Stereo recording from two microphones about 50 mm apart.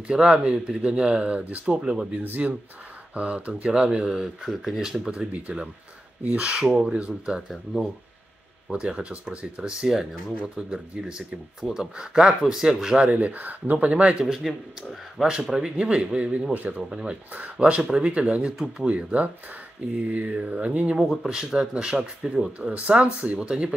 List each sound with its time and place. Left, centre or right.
0.1 s speech: centre
2.2 s speech: right; by 7.5 s centre
8.7 s speech: right
13.1 s speech: right
14.2 s a man's voice: centre
15.8 s speech: centre
21.3 s speech: centre
22.6 s speech: right